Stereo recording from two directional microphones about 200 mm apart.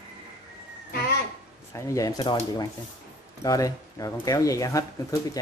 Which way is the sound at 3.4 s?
15° left (ahead or behind).